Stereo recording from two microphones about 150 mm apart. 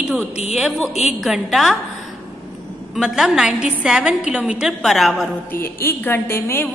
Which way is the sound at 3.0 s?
5° right (ahead or behind).